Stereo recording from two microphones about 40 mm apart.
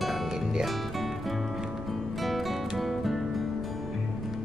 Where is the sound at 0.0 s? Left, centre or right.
Centre.